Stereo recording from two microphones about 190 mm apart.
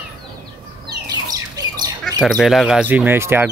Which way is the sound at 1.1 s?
20° right (ahead or behind).